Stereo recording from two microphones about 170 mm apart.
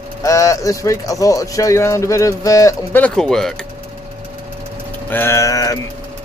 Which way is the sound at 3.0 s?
5° left (ahead or behind).